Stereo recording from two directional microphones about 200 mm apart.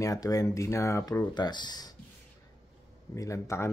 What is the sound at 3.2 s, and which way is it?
Speech, 15° left (ahead or behind).